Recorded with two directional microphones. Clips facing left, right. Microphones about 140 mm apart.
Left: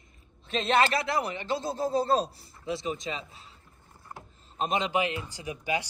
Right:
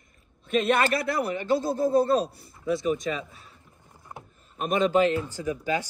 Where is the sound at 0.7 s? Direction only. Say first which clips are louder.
Even; 50° right (ahead or behind).